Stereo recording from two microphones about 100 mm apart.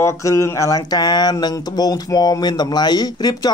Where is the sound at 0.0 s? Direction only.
30° left (ahead or behind).